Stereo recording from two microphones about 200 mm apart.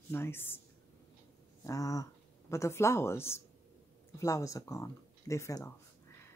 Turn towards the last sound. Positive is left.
turn(degrees=15)  # may be behind; listen again after turning